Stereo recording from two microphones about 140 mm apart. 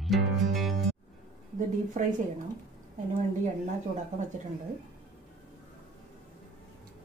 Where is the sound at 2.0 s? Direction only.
65° right (ahead or behind).